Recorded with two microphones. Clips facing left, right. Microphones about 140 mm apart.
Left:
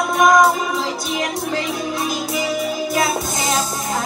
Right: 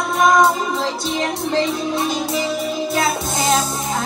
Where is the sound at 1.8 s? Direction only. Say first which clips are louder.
Right 2 dB; 25° right (ahead or behind).